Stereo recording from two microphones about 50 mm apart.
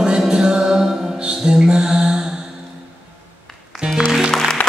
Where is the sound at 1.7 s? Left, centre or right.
Centre.